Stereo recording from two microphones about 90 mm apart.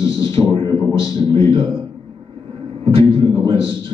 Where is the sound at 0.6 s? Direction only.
30° left (ahead or behind).